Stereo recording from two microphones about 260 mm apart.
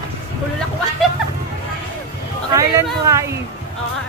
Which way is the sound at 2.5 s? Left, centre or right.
Centre.